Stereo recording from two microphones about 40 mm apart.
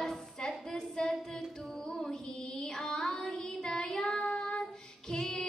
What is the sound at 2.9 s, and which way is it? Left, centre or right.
Child singing, centre.